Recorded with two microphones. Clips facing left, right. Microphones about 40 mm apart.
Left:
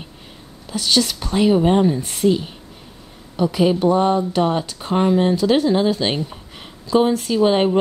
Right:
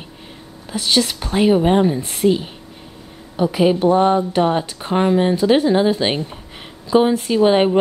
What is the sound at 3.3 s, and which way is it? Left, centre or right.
Speech, centre.